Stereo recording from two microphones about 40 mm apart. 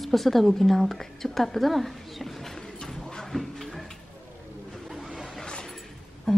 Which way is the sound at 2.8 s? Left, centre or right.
Centre.